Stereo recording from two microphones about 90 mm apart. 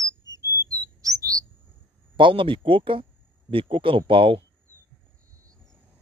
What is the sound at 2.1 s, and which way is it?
Speech, 70° right (ahead or behind).